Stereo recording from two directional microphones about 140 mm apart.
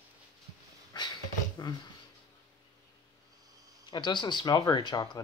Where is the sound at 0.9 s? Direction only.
30° left (ahead or behind).